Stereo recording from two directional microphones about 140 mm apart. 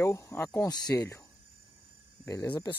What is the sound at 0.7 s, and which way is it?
Speech, 30° left (ahead or behind).